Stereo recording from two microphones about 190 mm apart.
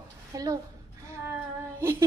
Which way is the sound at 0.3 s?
20° right (ahead or behind).